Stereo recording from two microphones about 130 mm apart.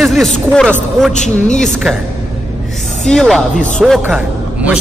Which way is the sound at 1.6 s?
5° left (ahead or behind).